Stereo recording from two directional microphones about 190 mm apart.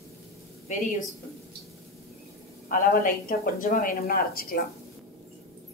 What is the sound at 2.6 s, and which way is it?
A woman's voice, 50° left (ahead or behind).